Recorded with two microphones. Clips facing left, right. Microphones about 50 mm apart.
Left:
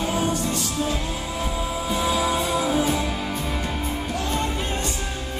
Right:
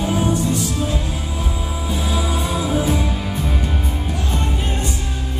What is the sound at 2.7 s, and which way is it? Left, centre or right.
Music, centre.